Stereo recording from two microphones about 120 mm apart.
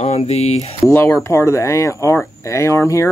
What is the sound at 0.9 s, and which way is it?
Speech, 20° left (ahead or behind).